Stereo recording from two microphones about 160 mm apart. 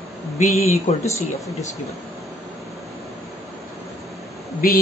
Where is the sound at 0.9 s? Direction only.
45° left (ahead or behind).